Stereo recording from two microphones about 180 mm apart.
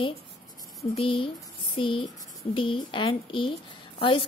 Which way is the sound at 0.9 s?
30° left (ahead or behind).